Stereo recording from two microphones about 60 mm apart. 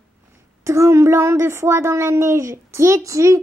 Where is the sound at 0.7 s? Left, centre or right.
Right.